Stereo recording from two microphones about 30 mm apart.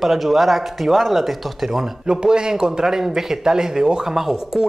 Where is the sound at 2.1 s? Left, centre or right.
Right.